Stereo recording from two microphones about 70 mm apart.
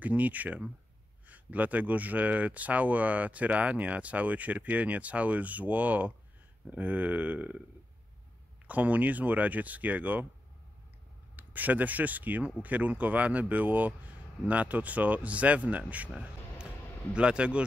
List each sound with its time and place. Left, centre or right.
0.0 s speech: right
8.6 s speech: right
11.3 s speech: right
17.1 s speech: centre